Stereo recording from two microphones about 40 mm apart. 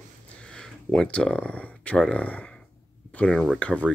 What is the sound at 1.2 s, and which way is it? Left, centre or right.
Speech, left.